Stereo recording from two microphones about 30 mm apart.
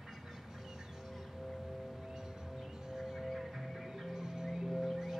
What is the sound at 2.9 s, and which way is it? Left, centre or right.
Music, centre.